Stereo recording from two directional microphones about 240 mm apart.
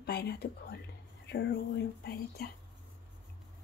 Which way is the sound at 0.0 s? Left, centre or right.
Left.